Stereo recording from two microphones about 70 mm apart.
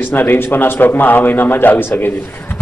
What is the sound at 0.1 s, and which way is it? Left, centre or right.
A man's voice, left.